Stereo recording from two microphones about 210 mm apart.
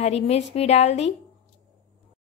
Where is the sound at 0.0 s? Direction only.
30° left (ahead or behind).